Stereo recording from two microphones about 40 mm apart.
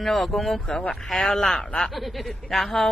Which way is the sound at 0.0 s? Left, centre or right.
Centre.